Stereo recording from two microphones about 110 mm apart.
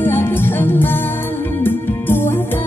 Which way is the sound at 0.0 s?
20° left (ahead or behind).